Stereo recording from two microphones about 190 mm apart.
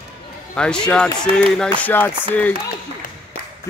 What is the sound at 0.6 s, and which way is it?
Speech, 5° left (ahead or behind).